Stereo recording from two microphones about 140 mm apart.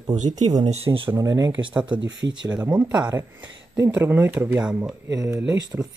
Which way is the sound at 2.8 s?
30° right (ahead or behind).